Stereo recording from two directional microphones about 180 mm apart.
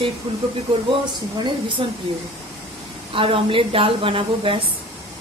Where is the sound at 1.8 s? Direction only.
25° right (ahead or behind).